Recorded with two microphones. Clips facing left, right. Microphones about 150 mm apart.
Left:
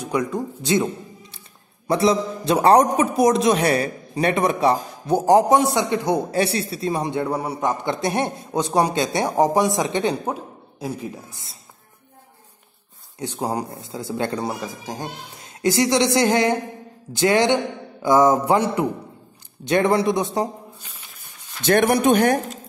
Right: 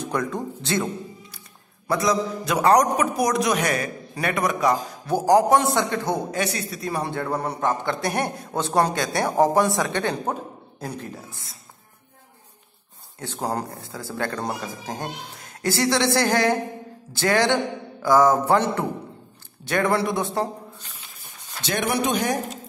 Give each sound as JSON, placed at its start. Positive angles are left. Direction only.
{"t": 0.0, "sound": "a man's voice", "side_deg": 10}
{"t": 1.9, "sound": "a man's voice", "side_deg": 25}
{"t": 6.3, "sound": "a man's voice", "side_deg": 30}
{"t": 10.3, "sound": "speech", "side_deg": 5}
{"t": 13.2, "sound": "a man's voice", "side_deg": 15}
{"t": 21.6, "sound": "speech", "side_deg": 50}